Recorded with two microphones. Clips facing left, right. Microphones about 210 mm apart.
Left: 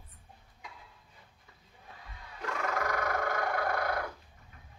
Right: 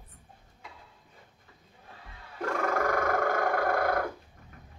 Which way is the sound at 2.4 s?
50° right (ahead or behind).